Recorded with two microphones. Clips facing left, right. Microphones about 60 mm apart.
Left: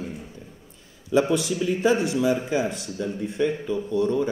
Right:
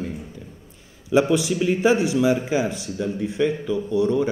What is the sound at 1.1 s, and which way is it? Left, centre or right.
Speech, right.